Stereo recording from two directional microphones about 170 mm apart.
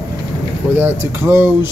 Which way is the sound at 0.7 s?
10° right (ahead or behind).